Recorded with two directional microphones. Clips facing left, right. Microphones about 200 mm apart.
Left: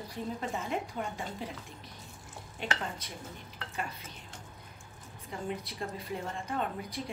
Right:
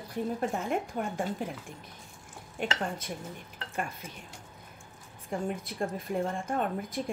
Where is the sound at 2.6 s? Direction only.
50° right (ahead or behind).